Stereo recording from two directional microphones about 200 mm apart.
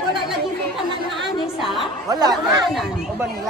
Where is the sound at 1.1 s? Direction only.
Centre (ahead or behind).